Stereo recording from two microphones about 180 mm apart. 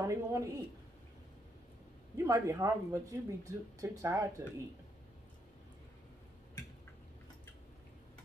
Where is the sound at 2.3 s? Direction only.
20° right (ahead or behind).